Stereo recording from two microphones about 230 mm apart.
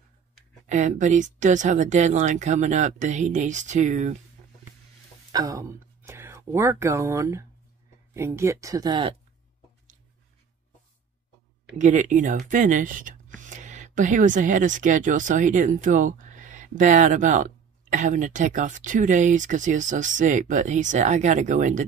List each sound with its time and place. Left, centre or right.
0.7 s speech: right
5.3 s speech: centre
11.8 s speech: right